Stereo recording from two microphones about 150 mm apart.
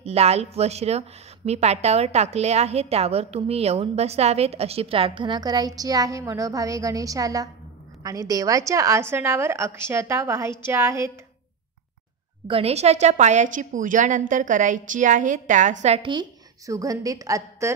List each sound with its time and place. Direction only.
0.0 s a woman's voice: 45° right (ahead or behind); by 11.1 s 20° right (ahead or behind)
12.4 s a woman's voice: 40° right (ahead or behind)
16.0 s a woman's voice: 30° right (ahead or behind)